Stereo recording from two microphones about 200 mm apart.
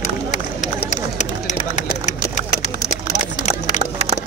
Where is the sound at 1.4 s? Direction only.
35° left (ahead or behind).